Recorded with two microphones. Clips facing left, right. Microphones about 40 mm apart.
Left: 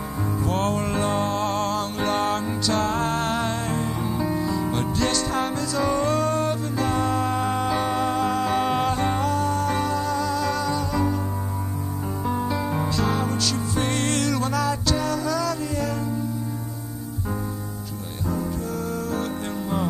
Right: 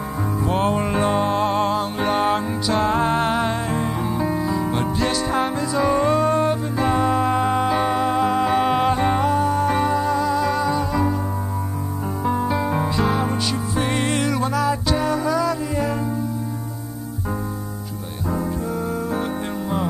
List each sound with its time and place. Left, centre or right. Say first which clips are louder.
0.5 s music: right 4 dB; centre
12.3 s music: right 4 dB; centre